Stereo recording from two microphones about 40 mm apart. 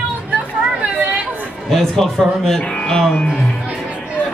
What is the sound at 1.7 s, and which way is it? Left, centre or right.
Music, centre.